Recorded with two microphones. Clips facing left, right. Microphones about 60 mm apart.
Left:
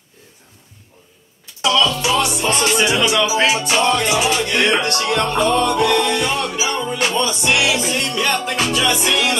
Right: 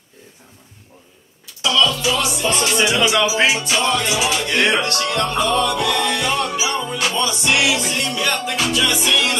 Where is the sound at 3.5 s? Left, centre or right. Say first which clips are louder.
Left 3 dB; left.